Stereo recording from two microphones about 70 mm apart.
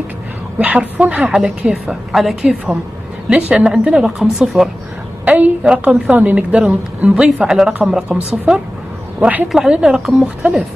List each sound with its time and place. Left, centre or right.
0.6 s a woman's voice: right
2.4 s a woman's voice: centre
5.2 s a woman's voice: right
9.7 s a woman's voice: centre